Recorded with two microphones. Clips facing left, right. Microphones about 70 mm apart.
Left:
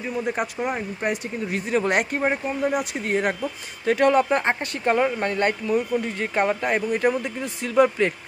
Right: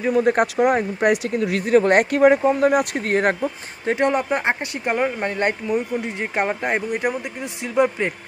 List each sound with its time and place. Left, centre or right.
0.0 s speech: right
1.7 s speech: right
2.1 s speech: right
3.8 s speech: right